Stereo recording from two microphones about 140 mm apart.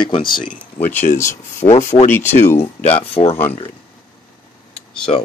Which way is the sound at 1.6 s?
35° left (ahead or behind).